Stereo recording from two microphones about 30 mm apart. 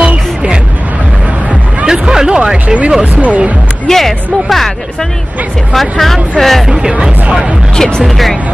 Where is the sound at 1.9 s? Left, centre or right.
Right.